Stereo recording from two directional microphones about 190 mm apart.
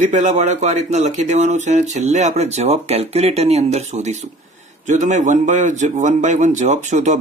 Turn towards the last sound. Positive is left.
turn(degrees=-40)  # may be behind; listen again after turning